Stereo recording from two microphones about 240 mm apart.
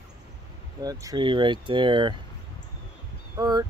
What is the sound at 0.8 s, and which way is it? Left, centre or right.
Speech, centre.